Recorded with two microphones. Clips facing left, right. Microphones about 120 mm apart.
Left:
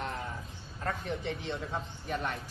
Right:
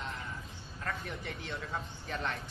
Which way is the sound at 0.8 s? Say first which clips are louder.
Left 5 dB; 25° left (ahead or behind).